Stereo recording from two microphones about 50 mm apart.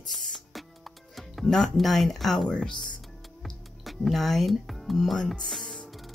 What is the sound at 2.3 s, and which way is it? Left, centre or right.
Speech, centre.